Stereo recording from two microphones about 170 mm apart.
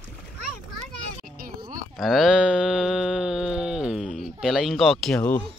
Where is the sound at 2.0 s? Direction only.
Centre (ahead or behind).